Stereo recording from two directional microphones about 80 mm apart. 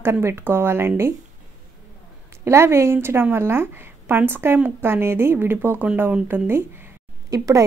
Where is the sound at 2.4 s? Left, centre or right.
Right.